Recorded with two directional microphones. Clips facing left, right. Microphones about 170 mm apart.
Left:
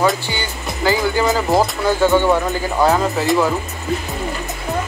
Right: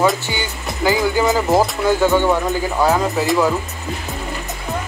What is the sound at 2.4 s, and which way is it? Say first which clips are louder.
Speech: left 1 dB; centre (ahead or behind).